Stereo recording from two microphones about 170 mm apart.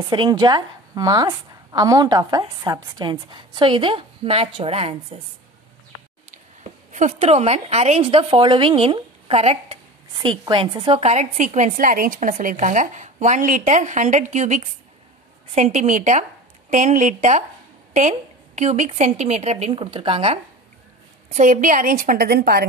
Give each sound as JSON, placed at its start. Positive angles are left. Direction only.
{"t": 0.0, "sound": "a woman's voice", "side_deg": -25}
{"t": 6.6, "sound": "a woman's voice", "side_deg": -45}
{"t": 21.3, "sound": "a woman's voice", "side_deg": -50}